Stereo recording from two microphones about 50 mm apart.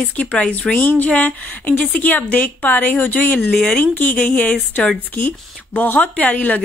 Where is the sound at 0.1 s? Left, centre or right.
Left.